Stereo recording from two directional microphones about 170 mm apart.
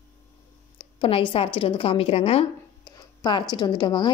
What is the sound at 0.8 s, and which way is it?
A woman's voice, 30° left (ahead or behind).